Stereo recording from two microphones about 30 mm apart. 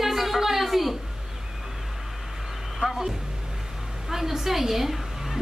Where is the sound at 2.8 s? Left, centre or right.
Right.